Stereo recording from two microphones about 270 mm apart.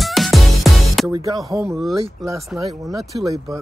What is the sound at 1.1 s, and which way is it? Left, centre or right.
Speech, centre.